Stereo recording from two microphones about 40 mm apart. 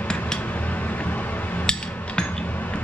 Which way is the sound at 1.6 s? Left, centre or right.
Centre.